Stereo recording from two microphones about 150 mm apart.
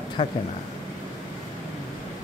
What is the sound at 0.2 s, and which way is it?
Speech, 35° left (ahead or behind).